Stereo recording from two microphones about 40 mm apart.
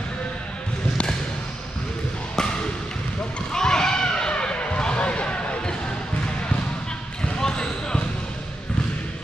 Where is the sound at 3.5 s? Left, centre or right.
Centre.